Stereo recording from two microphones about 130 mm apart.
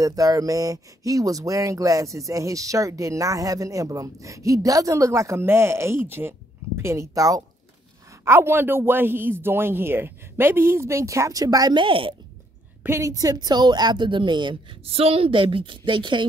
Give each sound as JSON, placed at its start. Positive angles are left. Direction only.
{"t": 0.0, "sound": "a man's voice", "side_deg": -25}
{"t": 12.8, "sound": "a woman's voice", "side_deg": -20}